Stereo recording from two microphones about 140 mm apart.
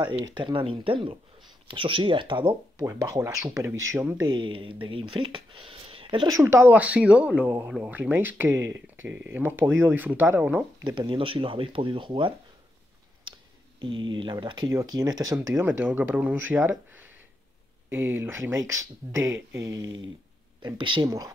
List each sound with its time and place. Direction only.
0.2 s speech: 35° right (ahead or behind)
2.8 s speech: 25° right (ahead or behind)
4.2 s speech: 35° right (ahead or behind)
6.2 s speech: 20° right (ahead or behind)
10.8 s speech: 35° right (ahead or behind)
13.7 s speech: 35° right (ahead or behind)
14.7 s speech: 20° right (ahead or behind)
20.6 s speech: 35° right (ahead or behind)